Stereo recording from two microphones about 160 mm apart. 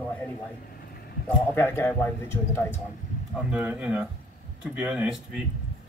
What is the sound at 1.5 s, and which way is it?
Speech, 15° left (ahead or behind).